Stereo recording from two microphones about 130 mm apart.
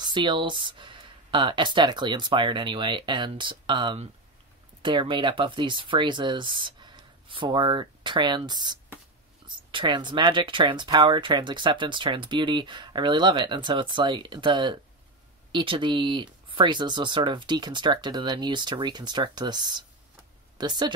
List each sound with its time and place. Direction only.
0.0 s speech: 35° right (ahead or behind)